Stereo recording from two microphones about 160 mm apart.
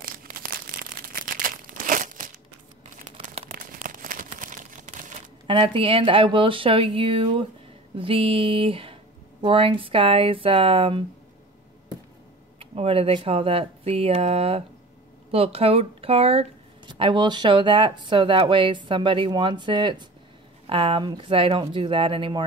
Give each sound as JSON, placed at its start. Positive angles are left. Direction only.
{"t": 1.1, "sound": "crumpling", "side_deg": -60}
{"t": 3.4, "sound": "crumpling", "side_deg": -55}
{"t": 5.5, "sound": "speech", "side_deg": -30}
{"t": 12.5, "sound": "speech", "side_deg": -35}